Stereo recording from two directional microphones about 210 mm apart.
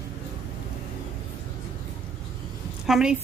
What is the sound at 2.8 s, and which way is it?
Speech, 5° right (ahead or behind).